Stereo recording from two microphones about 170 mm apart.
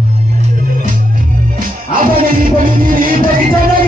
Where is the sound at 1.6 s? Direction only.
55° right (ahead or behind).